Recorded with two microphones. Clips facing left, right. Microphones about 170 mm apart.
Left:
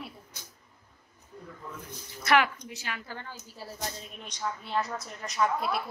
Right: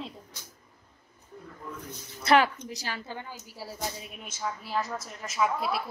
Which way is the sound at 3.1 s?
15° right (ahead or behind).